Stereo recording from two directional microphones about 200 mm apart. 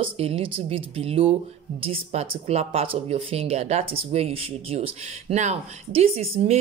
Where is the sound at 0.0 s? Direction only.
30° right (ahead or behind).